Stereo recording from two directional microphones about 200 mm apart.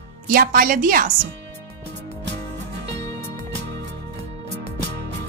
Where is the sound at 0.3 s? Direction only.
45° right (ahead or behind).